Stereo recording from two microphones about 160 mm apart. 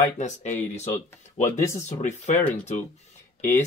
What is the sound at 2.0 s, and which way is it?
Speech, 45° left (ahead or behind).